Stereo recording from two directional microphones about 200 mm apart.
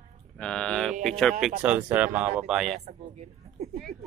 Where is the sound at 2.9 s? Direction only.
30° right (ahead or behind).